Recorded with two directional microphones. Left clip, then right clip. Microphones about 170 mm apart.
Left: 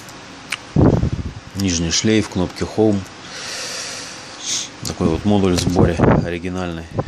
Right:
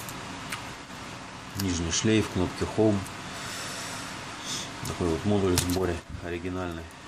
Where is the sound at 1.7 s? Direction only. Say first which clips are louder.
Left 9 dB; 40° left (ahead or behind).